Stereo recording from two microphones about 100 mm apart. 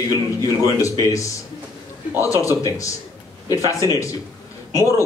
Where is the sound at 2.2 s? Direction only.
35° left (ahead or behind).